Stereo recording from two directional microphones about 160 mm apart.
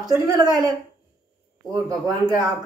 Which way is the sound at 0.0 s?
20° right (ahead or behind).